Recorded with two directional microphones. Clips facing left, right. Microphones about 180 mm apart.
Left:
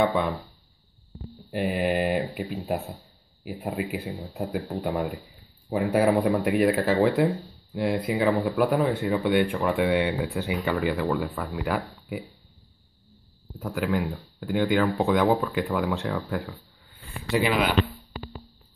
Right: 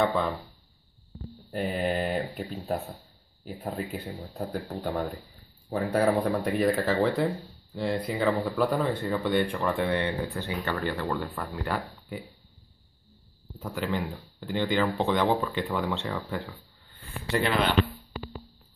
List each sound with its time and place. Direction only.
0.0 s speech: 15° left (ahead or behind)
1.5 s speech: 10° left (ahead or behind)
6.2 s speech: 5° left (ahead or behind)
13.6 s speech: centre (ahead or behind)